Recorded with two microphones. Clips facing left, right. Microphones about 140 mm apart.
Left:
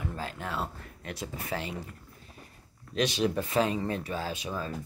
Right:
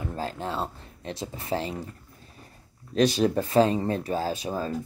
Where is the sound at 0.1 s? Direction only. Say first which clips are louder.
Right 5 dB; 35° right (ahead or behind).